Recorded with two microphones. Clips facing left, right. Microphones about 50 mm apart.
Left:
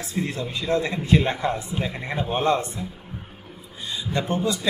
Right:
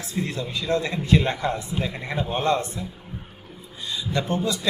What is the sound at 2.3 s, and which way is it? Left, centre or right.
Speech, left.